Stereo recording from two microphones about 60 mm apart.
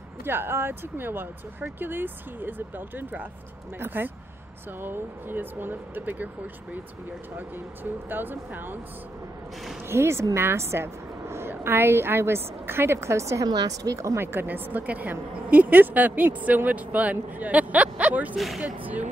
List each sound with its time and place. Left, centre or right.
0.2 s speech: right
9.8 s a woman's voice: right
14.1 s a woman's voice: right
18.3 s speech: centre
18.6 s a woman's voice: right